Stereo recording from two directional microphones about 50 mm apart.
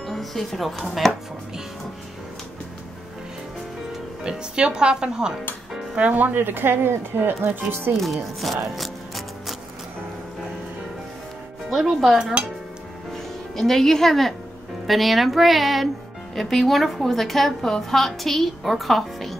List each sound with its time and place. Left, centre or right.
0.0 s speech: centre
4.2 s speech: centre
5.9 s speech: right
8.0 s a woman's voice: centre
8.7 s music: centre
11.7 s speech: centre
13.6 s a woman's voice: centre